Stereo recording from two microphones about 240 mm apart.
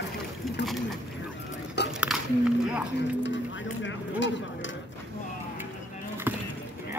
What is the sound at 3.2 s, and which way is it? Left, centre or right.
Run, left.